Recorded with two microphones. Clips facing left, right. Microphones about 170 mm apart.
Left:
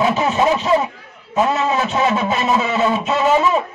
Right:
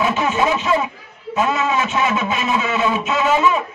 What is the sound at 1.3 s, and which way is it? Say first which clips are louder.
A man's voice: left 2 dB; 35° left (ahead or behind).